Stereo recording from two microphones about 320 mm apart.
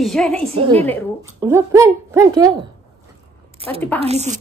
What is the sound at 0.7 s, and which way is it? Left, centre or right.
Speech, centre.